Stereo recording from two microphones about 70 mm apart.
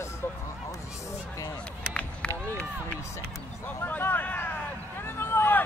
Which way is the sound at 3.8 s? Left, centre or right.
Left.